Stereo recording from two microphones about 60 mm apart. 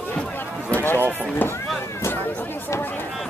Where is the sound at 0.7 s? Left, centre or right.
Left.